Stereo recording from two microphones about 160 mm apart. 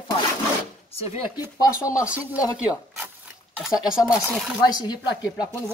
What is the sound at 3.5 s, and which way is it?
Speech, 5° right (ahead or behind).